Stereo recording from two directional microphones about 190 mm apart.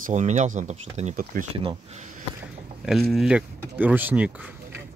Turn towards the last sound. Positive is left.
turn(degrees=-10)  # may be behind; listen again after turning